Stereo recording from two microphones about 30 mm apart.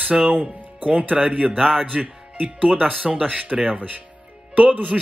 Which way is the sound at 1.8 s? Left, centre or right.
Right.